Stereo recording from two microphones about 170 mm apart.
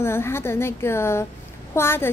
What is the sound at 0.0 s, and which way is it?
A woman's voice, 15° left (ahead or behind).